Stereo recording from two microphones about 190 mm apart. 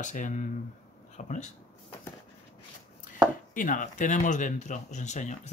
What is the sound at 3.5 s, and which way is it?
Speech, 45° left (ahead or behind).